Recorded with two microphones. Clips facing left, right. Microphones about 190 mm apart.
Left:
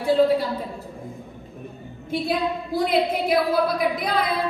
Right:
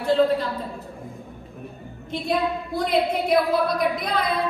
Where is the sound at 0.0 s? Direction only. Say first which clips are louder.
Left 1 dB; 10° left (ahead or behind).